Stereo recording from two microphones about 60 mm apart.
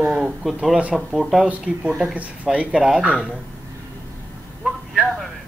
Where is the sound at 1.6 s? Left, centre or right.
Centre.